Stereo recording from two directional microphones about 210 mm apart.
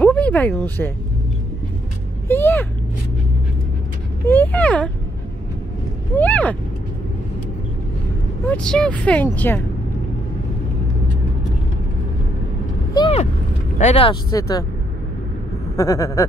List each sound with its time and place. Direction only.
0.0 s speech: 5° left (ahead or behind)
2.2 s speech: 10° left (ahead or behind)
4.3 s speech: 10° left (ahead or behind)
6.1 s speech: 5° left (ahead or behind)
8.5 s speech: 5° left (ahead or behind)
12.9 s vehicle: 25° left (ahead or behind)
13.7 s speech: 30° left (ahead or behind)
15.7 s speech: 15° left (ahead or behind)